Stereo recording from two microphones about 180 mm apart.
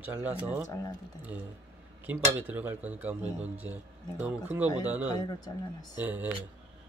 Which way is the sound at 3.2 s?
35° right (ahead or behind).